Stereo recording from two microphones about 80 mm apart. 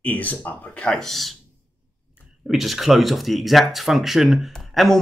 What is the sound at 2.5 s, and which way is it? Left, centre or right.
Speech, centre.